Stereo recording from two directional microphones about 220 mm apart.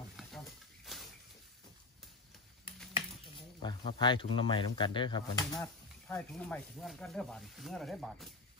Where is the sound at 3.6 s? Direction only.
20° left (ahead or behind).